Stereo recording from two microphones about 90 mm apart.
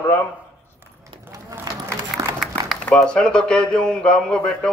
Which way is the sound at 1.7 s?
45° right (ahead or behind).